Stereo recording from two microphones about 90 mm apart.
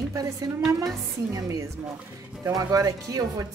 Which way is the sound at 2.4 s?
40° right (ahead or behind).